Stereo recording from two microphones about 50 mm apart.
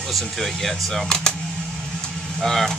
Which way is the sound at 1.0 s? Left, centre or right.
Centre.